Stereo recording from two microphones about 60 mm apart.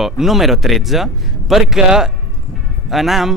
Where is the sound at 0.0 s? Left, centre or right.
Centre.